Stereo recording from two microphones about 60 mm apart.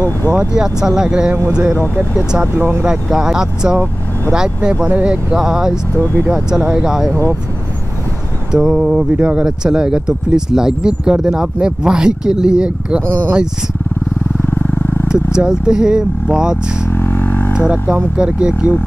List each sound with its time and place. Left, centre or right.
0.6 s speech: centre
2.4 s speech: right
2.8 s speech: centre
5.4 s speech: centre
8.5 s speech: centre
14.4 s vehicle: left
15.0 s speech: centre
16.9 s vehicle: left
17.6 s speech: centre